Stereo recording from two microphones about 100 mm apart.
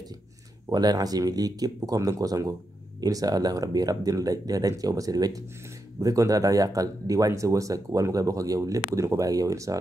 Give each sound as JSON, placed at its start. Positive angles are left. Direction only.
{"t": 0.7, "sound": "speech", "side_deg": -40}